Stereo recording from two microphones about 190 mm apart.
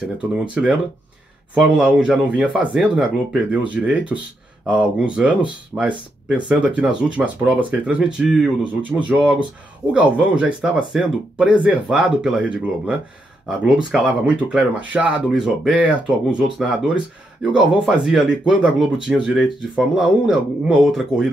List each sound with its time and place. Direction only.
0.0 s speech: 5° right (ahead or behind)